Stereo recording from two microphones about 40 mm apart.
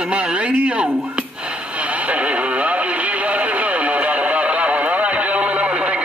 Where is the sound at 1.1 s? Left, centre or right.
Right.